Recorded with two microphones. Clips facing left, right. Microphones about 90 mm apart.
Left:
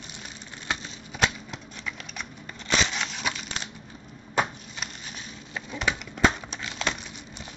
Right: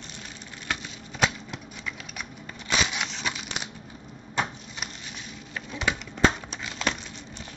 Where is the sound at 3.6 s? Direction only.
10° right (ahead or behind).